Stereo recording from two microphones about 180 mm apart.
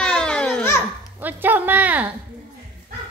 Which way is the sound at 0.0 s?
5° left (ahead or behind).